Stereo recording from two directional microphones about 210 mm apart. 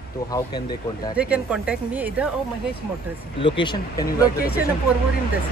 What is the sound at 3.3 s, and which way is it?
Speech, 25° left (ahead or behind).